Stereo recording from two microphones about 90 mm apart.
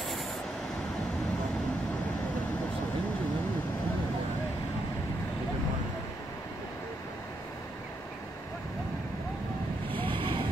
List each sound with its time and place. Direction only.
10.0 s vehicle: 70° right (ahead or behind)